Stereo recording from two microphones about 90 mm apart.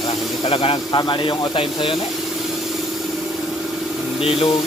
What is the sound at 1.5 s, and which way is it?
Speech, 80° left.